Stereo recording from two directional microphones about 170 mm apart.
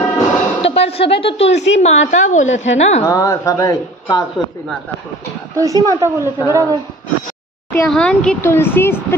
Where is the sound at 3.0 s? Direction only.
20° left (ahead or behind).